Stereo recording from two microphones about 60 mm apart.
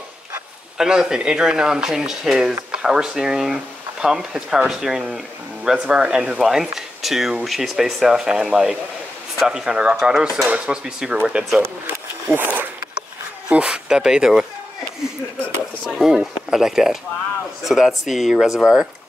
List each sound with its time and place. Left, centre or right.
0.7 s speech: centre
12.3 s speech: right
13.5 s speech: centre
15.9 s speech: centre